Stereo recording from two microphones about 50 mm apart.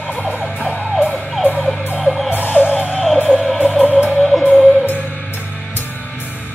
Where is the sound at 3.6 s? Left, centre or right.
Centre.